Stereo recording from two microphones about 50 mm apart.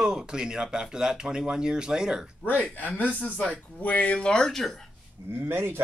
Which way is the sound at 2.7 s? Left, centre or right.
Left.